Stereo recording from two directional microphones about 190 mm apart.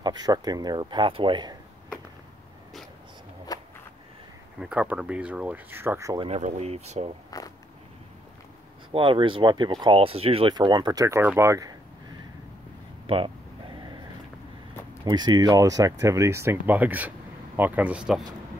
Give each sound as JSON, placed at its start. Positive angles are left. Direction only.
{"t": 0.0, "sound": "speech", "side_deg": -20}
{"t": 3.5, "sound": "a sound", "side_deg": 20}
{"t": 4.6, "sound": "speech", "side_deg": -5}
{"t": 6.2, "sound": "speech", "side_deg": -35}
{"t": 7.2, "sound": "speech", "side_deg": 20}
{"t": 8.9, "sound": "speech", "side_deg": -25}
{"t": 13.0, "sound": "a sound", "side_deg": -25}
{"t": 15.0, "sound": "speech", "side_deg": -20}